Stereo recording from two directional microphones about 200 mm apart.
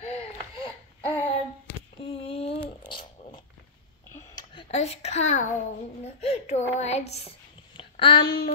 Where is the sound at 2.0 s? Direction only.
30° left (ahead or behind).